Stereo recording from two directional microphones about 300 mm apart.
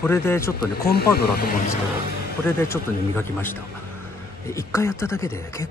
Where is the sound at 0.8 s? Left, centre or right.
Left.